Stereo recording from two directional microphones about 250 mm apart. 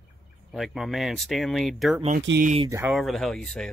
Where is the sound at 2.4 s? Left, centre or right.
Right.